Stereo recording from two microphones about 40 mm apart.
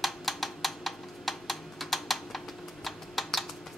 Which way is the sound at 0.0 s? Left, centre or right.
Centre.